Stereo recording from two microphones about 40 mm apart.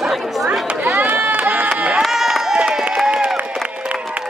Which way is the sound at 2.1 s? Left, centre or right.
Centre.